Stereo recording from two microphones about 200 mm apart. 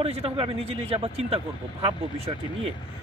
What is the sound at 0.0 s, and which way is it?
Speech, 30° right (ahead or behind).